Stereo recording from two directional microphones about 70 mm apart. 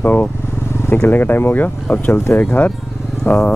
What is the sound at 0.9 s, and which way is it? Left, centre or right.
Speech, left.